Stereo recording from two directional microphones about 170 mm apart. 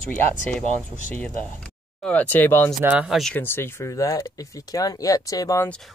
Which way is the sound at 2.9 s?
Centre (ahead or behind).